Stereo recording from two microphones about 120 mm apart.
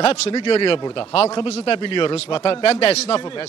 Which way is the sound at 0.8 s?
35° left (ahead or behind).